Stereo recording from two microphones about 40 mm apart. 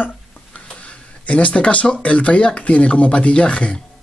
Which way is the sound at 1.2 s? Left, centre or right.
Left.